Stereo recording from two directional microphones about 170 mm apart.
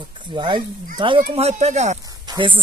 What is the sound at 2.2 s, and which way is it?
Speech, 30° right (ahead or behind).